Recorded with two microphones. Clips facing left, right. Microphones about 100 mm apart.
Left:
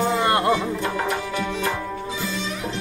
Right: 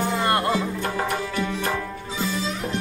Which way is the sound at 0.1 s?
20° left (ahead or behind).